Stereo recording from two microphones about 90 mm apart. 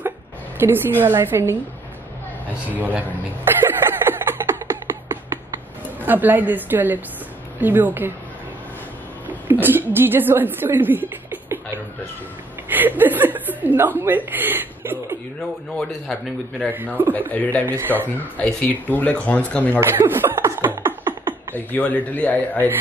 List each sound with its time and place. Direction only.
0.6 s a woman's voice: 25° right (ahead or behind)
2.7 s a sound: 20° right (ahead or behind)
6.0 s a woman's voice: 20° right (ahead or behind)
9.5 s speech: 20° right (ahead or behind)
12.6 s speech: 20° right (ahead or behind)
16.1 s a man's voice: 10° left (ahead or behind)
17.6 s a woman's voice: 25° right (ahead or behind)
18.2 s speech: 20° left (ahead or behind)
19.8 s beatboxing: 25° right (ahead or behind)
21.5 s speech: 20° left (ahead or behind)